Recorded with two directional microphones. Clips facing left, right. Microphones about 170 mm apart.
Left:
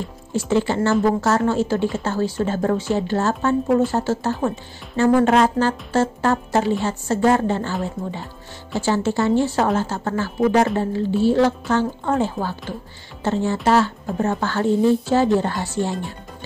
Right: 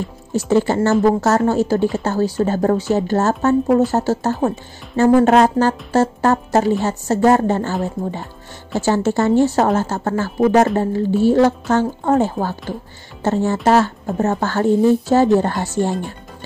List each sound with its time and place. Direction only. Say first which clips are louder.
0.3 s a woman's voice: right 4 dB; 40° right (ahead or behind)